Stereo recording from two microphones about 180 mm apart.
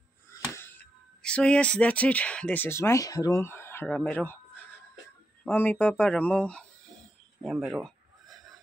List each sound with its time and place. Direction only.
0.3 s speech: 10° left (ahead or behind)
5.4 s speech: 10° left (ahead or behind)
7.4 s a sound: 5° right (ahead or behind)